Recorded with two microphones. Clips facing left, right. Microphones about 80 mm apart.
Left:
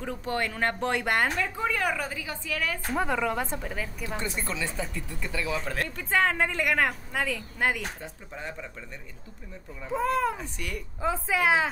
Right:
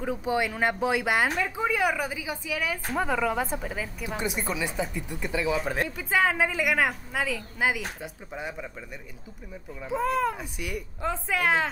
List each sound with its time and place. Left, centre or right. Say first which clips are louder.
0.0 s speech: right 3 dB; centre
5.9 s a woman's voice: even; centre
9.8 s a woman's voice: even; centre
11.0 s a woman's voice: left 2 dB; centre